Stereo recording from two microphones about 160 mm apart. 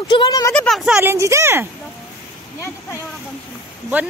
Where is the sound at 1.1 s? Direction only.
15° right (ahead or behind).